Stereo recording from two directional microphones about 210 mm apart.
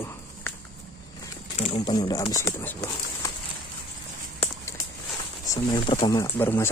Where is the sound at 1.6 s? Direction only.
25° left (ahead or behind).